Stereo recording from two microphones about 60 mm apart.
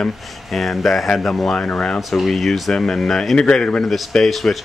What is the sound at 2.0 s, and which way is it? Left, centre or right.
Speech, centre.